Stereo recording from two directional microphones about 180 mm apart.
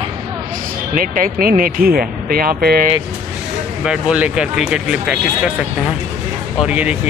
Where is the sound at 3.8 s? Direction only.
5° right (ahead or behind).